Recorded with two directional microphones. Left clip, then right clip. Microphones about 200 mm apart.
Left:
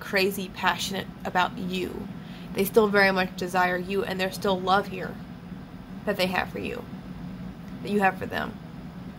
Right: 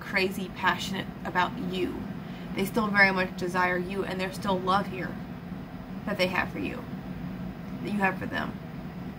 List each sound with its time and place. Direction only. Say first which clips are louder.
0.1 s a woman's voice: left 3 dB; 65° left (ahead or behind)
6.0 s a woman's voice: left 2 dB; 60° left (ahead or behind)
7.8 s a woman's voice: left 4 dB; 60° left (ahead or behind)